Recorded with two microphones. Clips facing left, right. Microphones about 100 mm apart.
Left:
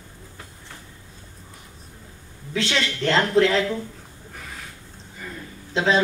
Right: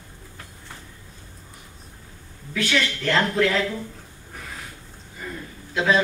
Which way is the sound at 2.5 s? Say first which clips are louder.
Right 1 dB; 25° left (ahead or behind).